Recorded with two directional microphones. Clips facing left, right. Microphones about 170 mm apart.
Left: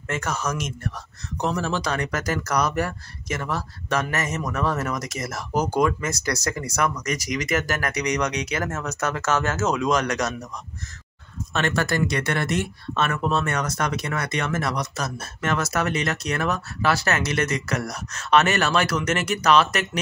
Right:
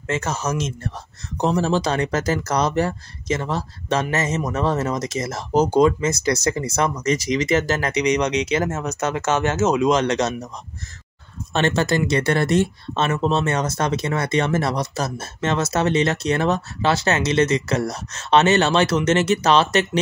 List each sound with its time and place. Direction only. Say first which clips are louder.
0.1 s speech: right 3 dB; 25° right (ahead or behind)
11.5 s speech: right 4 dB; 25° right (ahead or behind)